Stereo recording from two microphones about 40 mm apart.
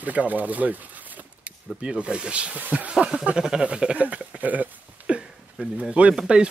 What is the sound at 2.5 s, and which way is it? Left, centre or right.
Speech, right.